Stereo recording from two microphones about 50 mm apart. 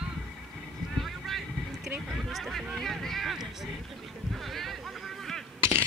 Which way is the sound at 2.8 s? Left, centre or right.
Centre.